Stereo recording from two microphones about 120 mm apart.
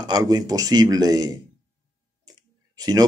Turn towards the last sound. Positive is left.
turn(degrees=-35)  # may be behind; listen again after turning